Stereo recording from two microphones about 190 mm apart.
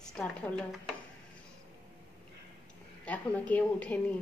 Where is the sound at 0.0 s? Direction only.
5° left (ahead or behind).